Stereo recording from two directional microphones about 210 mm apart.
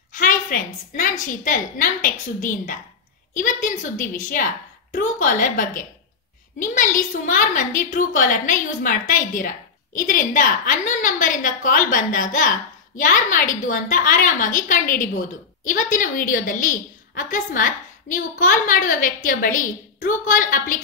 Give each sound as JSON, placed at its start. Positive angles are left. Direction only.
{"t": 0.1, "sound": "a child's voice", "side_deg": 40}